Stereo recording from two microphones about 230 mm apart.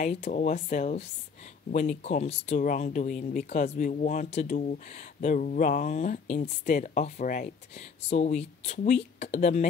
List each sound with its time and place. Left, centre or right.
0.0 s speech: left